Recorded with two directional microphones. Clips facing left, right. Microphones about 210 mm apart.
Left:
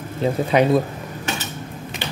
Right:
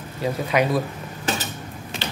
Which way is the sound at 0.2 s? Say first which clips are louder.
Left 4 dB; 25° left (ahead or behind).